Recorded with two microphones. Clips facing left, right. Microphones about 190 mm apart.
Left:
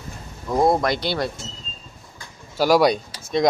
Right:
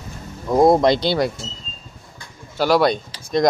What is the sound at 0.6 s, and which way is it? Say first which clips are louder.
Speech: right 6 dB; 25° right (ahead or behind).